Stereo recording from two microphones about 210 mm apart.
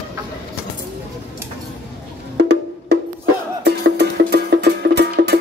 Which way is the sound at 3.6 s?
50° right (ahead or behind).